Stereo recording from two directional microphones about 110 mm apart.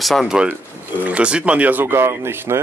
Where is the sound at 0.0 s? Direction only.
Centre (ahead or behind).